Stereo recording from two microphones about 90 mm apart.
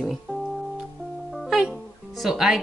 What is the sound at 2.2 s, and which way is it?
Speech, 5° right (ahead or behind).